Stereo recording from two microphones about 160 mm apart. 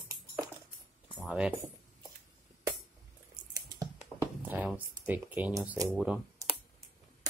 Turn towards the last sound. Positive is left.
turn(degrees=-5)  # may be behind; listen again after turning